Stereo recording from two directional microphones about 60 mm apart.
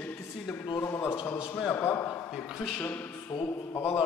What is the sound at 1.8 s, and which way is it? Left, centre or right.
Speech, left.